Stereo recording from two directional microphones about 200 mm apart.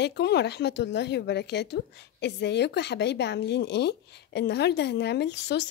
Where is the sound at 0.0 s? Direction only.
55° left (ahead or behind).